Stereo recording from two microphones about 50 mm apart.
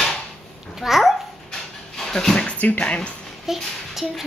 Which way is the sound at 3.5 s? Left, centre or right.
Centre.